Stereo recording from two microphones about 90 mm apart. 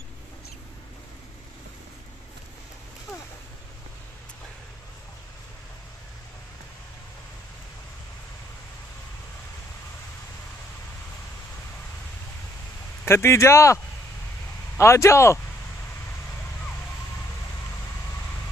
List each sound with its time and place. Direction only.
13.0 s speech: 30° left (ahead or behind)
14.8 s speech: 30° left (ahead or behind)